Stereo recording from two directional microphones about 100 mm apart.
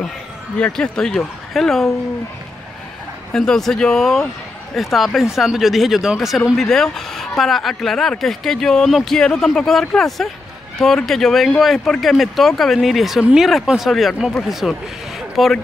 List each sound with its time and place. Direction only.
0.6 s speech: 10° left (ahead or behind)
3.3 s speech: 5° left (ahead or behind)